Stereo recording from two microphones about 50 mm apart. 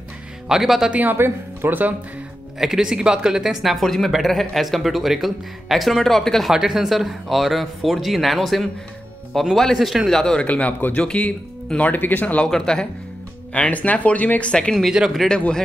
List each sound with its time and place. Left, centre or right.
0.5 s speech: centre
1.1 s speech: right
2.6 s speech: centre
6.5 s speech: centre
10.4 s speech: left
12.4 s speech: centre
13.5 s speech: left
14.9 s speech: centre
15.2 s speech: centre